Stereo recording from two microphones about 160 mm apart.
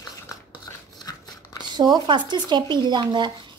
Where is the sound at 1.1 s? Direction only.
20° left (ahead or behind).